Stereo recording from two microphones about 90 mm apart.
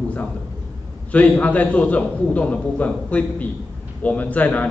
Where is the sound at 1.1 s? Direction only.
15° left (ahead or behind).